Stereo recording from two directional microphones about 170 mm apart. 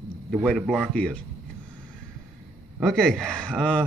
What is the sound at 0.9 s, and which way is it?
Speech, 5° left (ahead or behind).